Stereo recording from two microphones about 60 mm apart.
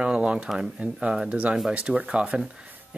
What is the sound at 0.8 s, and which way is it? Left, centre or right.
Speech, right.